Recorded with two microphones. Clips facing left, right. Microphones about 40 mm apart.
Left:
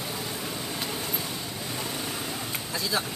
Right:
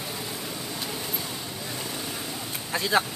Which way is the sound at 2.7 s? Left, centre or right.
Right.